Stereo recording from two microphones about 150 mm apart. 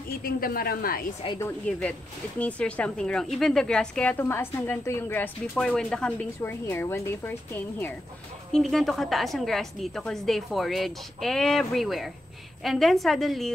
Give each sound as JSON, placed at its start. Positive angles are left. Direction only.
{"t": 0.2, "sound": "a woman's voice", "side_deg": 80}
{"t": 1.4, "sound": "speech", "side_deg": 10}
{"t": 8.5, "sound": "a woman's voice", "side_deg": 0}